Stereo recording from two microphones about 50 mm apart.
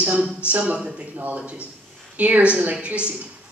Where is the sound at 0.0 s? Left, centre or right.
Right.